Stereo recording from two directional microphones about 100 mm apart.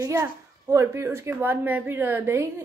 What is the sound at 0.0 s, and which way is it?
A woman's voice, 30° right (ahead or behind).